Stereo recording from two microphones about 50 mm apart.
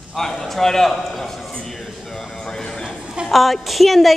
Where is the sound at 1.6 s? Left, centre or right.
Centre.